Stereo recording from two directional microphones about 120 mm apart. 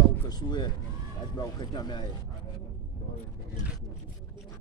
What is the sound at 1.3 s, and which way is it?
Speech, 35° left (ahead or behind).